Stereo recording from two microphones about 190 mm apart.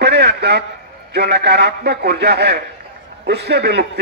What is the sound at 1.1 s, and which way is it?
A man's voice, 60° right (ahead or behind).